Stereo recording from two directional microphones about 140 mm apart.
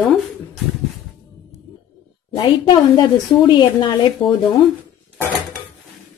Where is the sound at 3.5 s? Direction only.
35° left (ahead or behind).